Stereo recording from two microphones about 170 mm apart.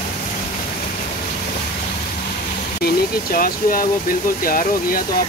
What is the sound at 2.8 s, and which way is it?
Speech, 55° left (ahead or behind).